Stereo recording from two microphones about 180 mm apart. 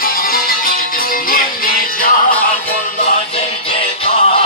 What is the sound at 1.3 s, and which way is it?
Music, 50° left (ahead or behind).